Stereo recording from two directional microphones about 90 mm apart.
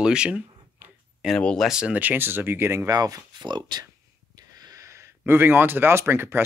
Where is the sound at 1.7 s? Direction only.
10° right (ahead or behind); by 2.9 s 25° right (ahead or behind).